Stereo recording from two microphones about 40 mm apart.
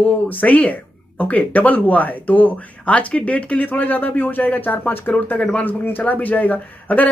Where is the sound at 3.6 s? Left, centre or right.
Left.